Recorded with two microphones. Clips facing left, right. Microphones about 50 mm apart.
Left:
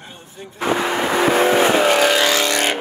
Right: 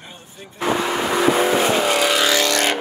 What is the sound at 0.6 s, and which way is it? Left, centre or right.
Vehicle, left.